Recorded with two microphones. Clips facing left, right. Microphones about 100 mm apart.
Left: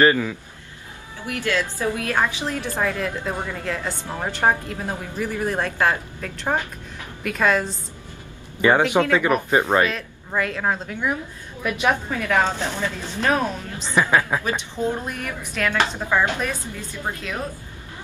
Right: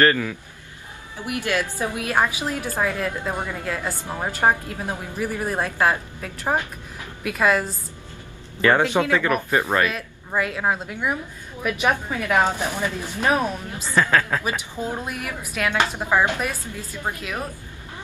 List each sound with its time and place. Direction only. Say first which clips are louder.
0.0 s a woman's voice: left 2 dB; 15° left (ahead or behind)
1.2 s a woman's voice: even; 15° right (ahead or behind)
8.5 s a woman's voice: left 1 dB; 15° left (ahead or behind)
9.8 s a woman's voice: even; 5° right (ahead or behind)
13.8 s a woman's voice: left 1 dB; 15° left (ahead or behind)
14.4 s a woman's voice: left 3 dB; 10° right (ahead or behind)